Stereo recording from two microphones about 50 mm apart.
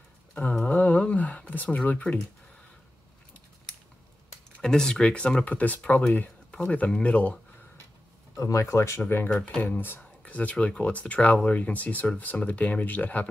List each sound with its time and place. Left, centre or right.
0.3 s a sound: left
1.9 s speech: left
4.6 s speech: centre
8.4 s speech: left
9.6 s speech: left
10.2 s speech: left